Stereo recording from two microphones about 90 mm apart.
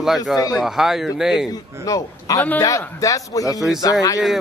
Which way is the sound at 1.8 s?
40° left (ahead or behind).